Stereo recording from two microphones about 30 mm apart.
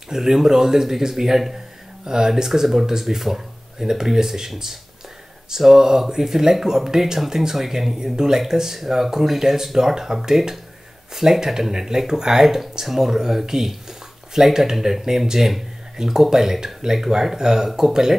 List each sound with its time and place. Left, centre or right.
0.1 s speech: centre
5.5 s speech: centre
8.0 s speech: right